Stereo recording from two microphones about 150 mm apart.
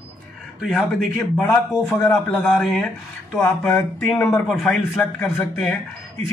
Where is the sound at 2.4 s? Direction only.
Centre (ahead or behind).